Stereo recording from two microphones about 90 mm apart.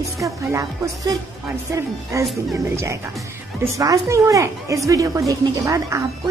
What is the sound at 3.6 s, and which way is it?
A woman's voice, 40° right (ahead or behind).